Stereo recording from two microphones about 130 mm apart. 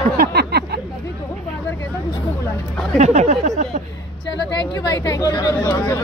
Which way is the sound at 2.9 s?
60° right (ahead or behind).